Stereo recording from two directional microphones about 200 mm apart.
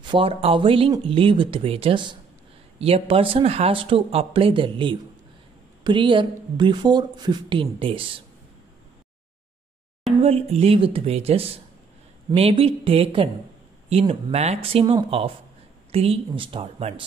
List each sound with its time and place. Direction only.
0.0 s a woman's voice: 25° right (ahead or behind)
10.2 s a woman's voice: 30° right (ahead or behind)